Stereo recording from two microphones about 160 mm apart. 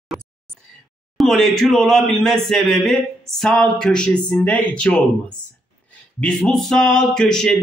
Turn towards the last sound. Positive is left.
turn(degrees=5)  # may be behind; listen again after turning